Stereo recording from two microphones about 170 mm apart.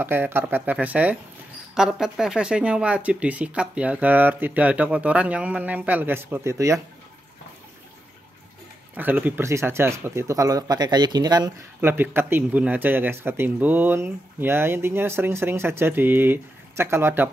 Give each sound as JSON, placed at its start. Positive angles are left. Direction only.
{"t": 0.0, "sound": "speech", "side_deg": -10}
{"t": 8.9, "sound": "speech", "side_deg": -10}